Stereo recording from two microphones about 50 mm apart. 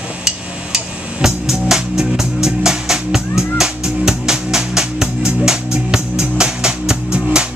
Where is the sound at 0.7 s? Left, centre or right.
Centre.